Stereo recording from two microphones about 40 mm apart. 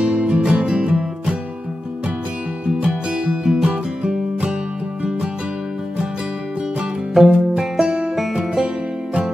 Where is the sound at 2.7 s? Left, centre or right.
Right.